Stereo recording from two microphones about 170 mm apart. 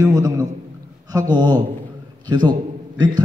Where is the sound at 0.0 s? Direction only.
20° right (ahead or behind).